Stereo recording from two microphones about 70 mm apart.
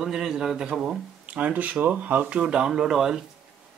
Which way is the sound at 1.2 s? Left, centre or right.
Centre.